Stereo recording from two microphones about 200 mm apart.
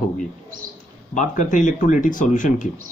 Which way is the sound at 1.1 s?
40° left (ahead or behind).